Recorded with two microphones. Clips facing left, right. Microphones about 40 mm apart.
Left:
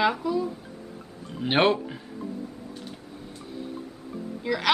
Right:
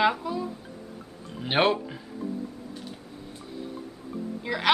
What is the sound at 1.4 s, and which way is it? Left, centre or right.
Speech, centre.